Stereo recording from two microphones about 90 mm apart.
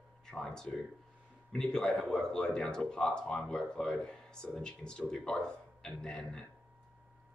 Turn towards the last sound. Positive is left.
turn(degrees=10)  # may be behind; listen again after turning